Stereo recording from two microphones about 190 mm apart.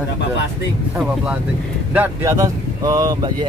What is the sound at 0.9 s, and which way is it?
Speech, 5° right (ahead or behind).